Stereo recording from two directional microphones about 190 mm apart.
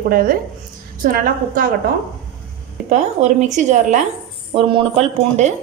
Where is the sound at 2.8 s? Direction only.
40° right (ahead or behind).